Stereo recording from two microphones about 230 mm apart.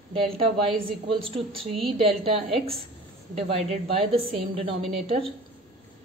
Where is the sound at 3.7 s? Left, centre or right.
Right.